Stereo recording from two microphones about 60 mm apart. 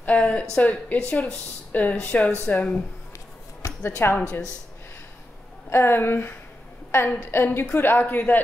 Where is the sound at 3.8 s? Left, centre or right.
Left.